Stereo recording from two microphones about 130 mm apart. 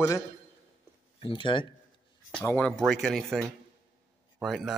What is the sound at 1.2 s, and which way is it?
Speech, 40° left (ahead or behind).